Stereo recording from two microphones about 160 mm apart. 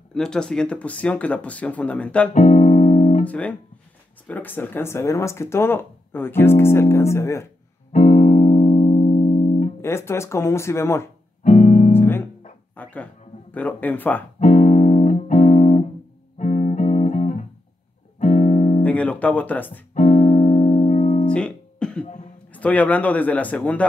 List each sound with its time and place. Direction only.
0.1 s speech: 5° left (ahead or behind)
2.3 s music: 50° left (ahead or behind)
3.3 s speech: 10° left (ahead or behind)
7.9 s music: 45° left (ahead or behind)
9.8 s speech: 15° left (ahead or behind)
11.4 s music: 50° left (ahead or behind)
11.9 s music: 15° left (ahead or behind)
12.7 s speech: 10° left (ahead or behind)
14.4 s music: 45° left (ahead or behind)
18.8 s music: 10° left (ahead or behind)
19.9 s music: 45° left (ahead or behind)
21.3 s music: 5° left (ahead or behind)
22.5 s speech: 10° left (ahead or behind)